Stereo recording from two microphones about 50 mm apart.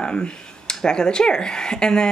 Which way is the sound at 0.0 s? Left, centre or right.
Centre.